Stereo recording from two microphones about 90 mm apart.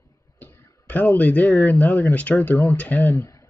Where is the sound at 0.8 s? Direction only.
15° left (ahead or behind).